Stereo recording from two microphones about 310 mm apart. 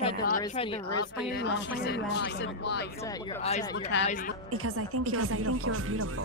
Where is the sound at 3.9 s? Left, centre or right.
Left.